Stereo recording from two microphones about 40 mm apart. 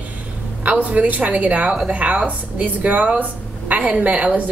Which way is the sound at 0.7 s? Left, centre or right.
Right.